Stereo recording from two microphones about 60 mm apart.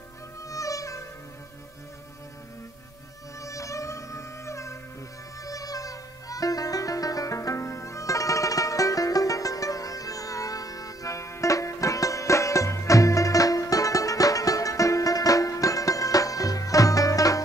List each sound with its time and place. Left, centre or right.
0.4 s music: left
3.3 s music: left
5.4 s music: left